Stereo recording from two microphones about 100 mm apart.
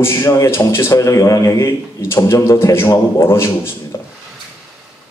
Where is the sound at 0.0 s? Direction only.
25° left (ahead or behind).